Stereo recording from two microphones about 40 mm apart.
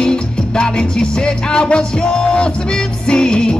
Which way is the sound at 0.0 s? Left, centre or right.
Left.